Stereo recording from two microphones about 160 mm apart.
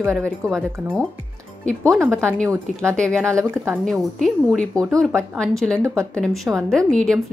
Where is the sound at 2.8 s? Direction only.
5° left (ahead or behind).